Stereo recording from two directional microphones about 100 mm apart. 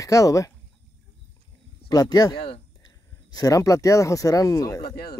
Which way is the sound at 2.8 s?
40° left (ahead or behind).